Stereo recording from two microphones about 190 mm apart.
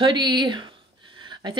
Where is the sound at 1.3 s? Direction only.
25° right (ahead or behind).